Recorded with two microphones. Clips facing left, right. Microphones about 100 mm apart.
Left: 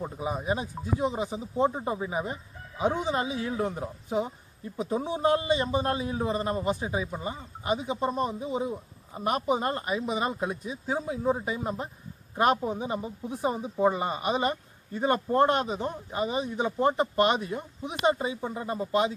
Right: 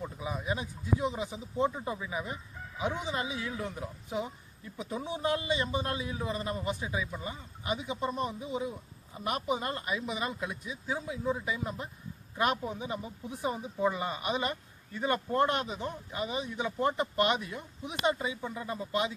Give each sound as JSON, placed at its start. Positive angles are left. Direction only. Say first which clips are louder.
{"t": 0.0, "sound": "speech", "louder": "left 5 dB", "side_deg": 35}